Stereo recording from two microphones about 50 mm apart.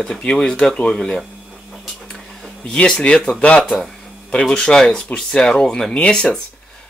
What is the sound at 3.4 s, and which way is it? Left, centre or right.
Speech, left.